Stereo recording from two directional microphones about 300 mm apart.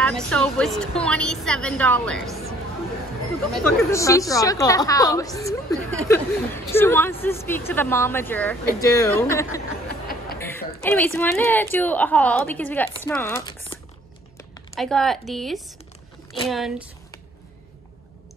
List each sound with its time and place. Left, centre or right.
0.0 s a woman's voice: centre
3.5 s a woman's voice: centre
9.8 s a sound: left
10.8 s a woman's voice: centre
14.8 s a woman's voice: centre